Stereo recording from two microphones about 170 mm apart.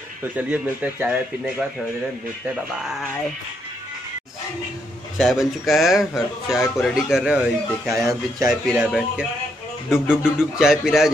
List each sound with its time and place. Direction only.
0.4 s speech: 10° right (ahead or behind)
5.1 s speech: centre (ahead or behind)
7.9 s speech: 20° right (ahead or behind)
8.5 s speech: centre (ahead or behind)